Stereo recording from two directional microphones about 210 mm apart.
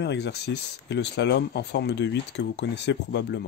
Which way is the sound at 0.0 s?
55° left (ahead or behind).